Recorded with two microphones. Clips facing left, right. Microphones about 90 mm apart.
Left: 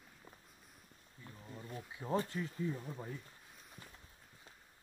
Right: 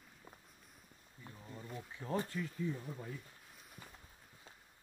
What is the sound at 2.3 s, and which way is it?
Speech, 40° left (ahead or behind).